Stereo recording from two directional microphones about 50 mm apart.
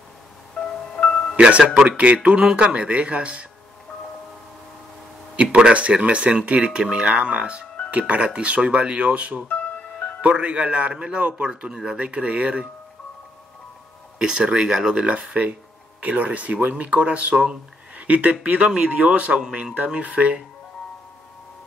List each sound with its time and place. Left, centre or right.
0.6 s music: centre
1.3 s speech: right
5.3 s speech: right
9.5 s music: left
10.2 s speech: right
11.4 s speech: centre
14.1 s speech: centre
15.0 s speech: right